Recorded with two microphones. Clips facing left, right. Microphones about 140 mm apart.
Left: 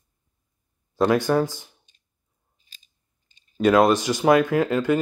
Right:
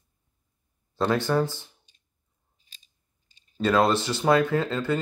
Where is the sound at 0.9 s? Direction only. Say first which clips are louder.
Left 4 dB; 10° left (ahead or behind).